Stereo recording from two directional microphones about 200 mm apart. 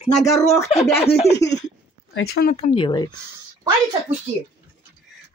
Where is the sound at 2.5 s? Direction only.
25° left (ahead or behind).